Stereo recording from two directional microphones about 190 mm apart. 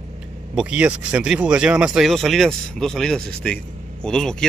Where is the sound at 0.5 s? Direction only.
5° right (ahead or behind).